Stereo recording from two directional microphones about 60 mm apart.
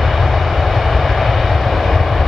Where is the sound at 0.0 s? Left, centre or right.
Centre.